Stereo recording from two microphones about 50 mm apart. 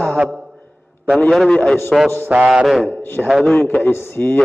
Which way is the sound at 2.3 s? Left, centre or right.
Right.